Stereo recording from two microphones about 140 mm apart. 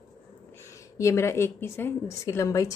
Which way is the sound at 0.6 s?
20° left (ahead or behind).